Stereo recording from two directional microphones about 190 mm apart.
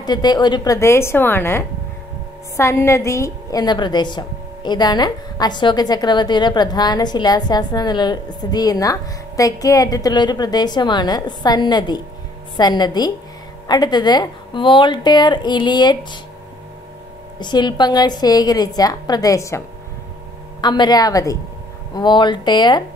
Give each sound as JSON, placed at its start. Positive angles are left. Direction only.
{"t": 0.0, "sound": "a woman's voice", "side_deg": 20}
{"t": 17.4, "sound": "a woman's voice", "side_deg": 25}
{"t": 20.6, "sound": "a woman's voice", "side_deg": 20}